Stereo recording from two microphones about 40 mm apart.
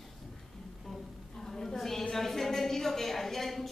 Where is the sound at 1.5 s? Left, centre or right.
Centre.